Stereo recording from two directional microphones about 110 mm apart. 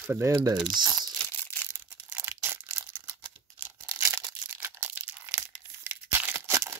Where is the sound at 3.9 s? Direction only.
25° right (ahead or behind).